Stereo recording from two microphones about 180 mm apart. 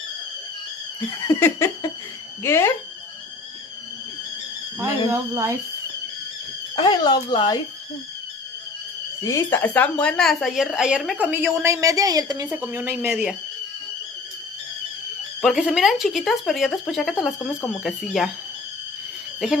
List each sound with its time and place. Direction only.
1.2 s laughter: 15° left (ahead or behind)
4.7 s speech: 15° right (ahead or behind)
6.7 s speech: 25° left (ahead or behind)
9.2 s speech: 15° left (ahead or behind); by 12.4 s 20° right (ahead or behind)
12.4 s speech: 10° right (ahead or behind)
15.4 s speech: centre (ahead or behind)